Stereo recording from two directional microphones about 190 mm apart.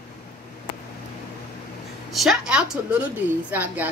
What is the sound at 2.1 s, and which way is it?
A woman's voice, centre (ahead or behind).